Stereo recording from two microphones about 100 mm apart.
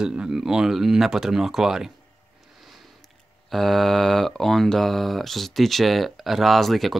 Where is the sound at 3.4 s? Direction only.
Centre (ahead or behind).